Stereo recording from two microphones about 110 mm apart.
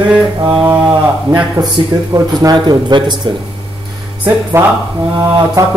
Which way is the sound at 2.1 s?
35° right (ahead or behind).